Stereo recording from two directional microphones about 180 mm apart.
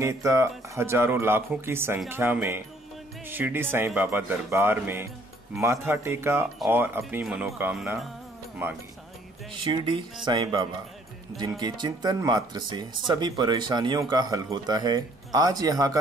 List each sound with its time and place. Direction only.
0.0 s speech: 15° right (ahead or behind)
9.5 s speech: 30° right (ahead or behind)